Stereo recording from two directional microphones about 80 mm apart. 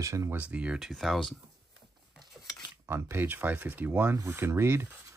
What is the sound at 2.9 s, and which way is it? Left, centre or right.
Speech, right.